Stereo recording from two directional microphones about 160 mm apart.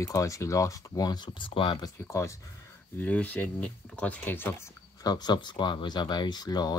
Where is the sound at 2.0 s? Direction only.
20° left (ahead or behind).